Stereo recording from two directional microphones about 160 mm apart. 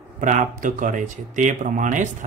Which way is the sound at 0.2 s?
55° right (ahead or behind).